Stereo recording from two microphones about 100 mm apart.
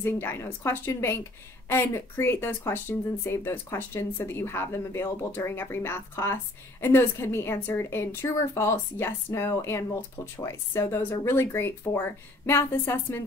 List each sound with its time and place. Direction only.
0.0 s speech: 25° left (ahead or behind)